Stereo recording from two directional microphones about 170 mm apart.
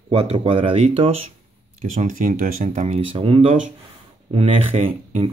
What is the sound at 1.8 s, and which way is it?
Speech, 50° right (ahead or behind).